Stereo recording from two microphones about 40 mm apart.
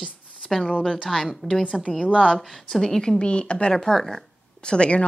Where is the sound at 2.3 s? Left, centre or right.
Centre.